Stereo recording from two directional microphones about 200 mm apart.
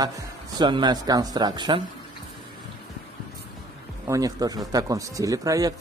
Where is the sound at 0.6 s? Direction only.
20° right (ahead or behind).